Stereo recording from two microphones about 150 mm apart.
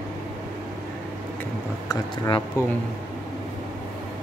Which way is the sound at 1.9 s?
30° left (ahead or behind).